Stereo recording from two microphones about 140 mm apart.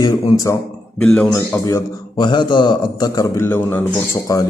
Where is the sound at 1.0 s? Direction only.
5° left (ahead or behind).